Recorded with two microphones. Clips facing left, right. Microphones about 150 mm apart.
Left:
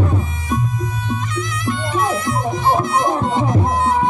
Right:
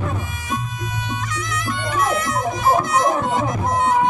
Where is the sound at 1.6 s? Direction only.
25° left (ahead or behind).